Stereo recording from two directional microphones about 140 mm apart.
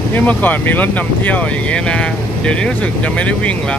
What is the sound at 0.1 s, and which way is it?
Speech, 10° left (ahead or behind).